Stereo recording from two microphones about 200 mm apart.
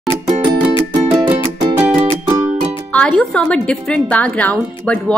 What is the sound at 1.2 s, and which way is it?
Music, 20° right (ahead or behind).